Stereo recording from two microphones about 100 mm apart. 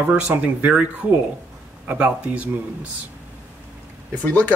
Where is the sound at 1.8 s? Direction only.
15° right (ahead or behind).